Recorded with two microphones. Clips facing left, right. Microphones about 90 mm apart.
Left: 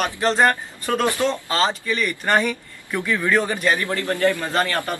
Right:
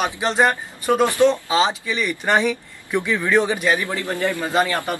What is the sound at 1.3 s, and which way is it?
Speech, 10° right (ahead or behind).